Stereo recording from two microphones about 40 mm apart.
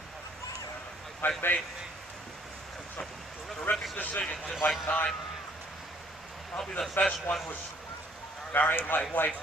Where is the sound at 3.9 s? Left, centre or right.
Left.